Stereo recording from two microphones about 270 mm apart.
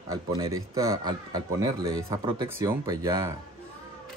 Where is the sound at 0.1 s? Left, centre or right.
Centre.